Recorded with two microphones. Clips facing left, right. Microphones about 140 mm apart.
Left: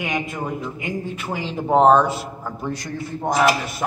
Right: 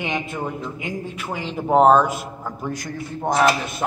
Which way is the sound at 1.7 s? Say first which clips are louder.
Even; 5° right (ahead or behind).